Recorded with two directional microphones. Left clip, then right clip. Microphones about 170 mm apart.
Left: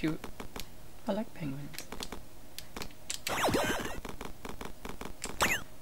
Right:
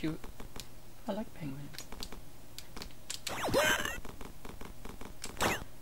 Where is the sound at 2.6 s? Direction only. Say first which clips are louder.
Left 4 dB; 20° left (ahead or behind).